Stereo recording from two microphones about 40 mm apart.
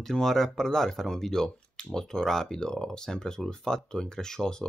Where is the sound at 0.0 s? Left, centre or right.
Centre.